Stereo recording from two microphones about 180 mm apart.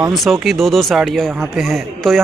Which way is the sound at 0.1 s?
Centre (ahead or behind).